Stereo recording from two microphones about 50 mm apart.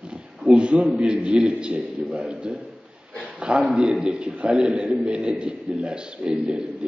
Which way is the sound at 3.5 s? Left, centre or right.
Right.